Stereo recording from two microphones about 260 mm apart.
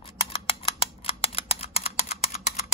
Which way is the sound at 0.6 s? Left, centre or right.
Left.